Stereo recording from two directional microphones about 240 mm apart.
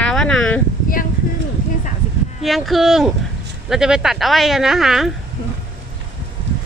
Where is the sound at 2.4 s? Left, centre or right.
Centre.